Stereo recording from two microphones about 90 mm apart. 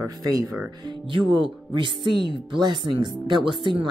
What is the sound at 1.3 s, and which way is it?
Speech, 60° right (ahead or behind).